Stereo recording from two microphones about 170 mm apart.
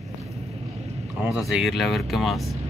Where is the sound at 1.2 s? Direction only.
5° right (ahead or behind).